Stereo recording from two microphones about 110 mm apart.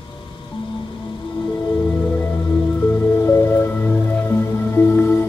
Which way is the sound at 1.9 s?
15° left (ahead or behind).